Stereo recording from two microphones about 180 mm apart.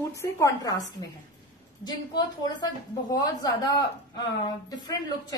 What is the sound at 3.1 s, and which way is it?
A woman's voice, 20° left (ahead or behind).